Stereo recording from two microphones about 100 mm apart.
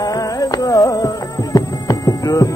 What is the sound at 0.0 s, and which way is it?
Music, 35° left (ahead or behind).